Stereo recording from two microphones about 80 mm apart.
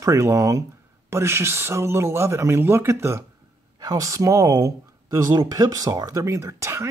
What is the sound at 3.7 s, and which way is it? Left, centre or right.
Speech, right.